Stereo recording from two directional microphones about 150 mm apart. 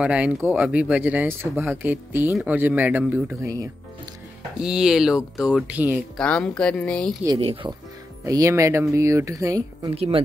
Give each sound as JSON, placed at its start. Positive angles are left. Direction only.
{"t": 0.0, "sound": "speech", "side_deg": -10}
{"t": 4.6, "sound": "speech", "side_deg": -5}
{"t": 6.1, "sound": "speech", "side_deg": 5}
{"t": 7.3, "sound": "speech", "side_deg": -40}
{"t": 8.3, "sound": "speech", "side_deg": -20}
{"t": 9.9, "sound": "speech", "side_deg": -40}